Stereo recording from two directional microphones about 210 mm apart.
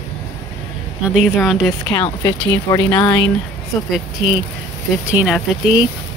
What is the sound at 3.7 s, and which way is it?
Speech, centre (ahead or behind).